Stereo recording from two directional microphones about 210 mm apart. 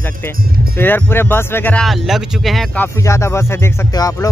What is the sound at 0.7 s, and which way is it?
Speech, 10° left (ahead or behind).